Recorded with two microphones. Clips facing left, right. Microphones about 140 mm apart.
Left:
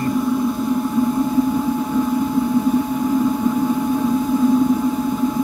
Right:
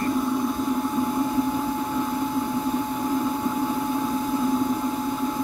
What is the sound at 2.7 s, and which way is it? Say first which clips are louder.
Vehicle: left 7 dB; 5° left (ahead or behind).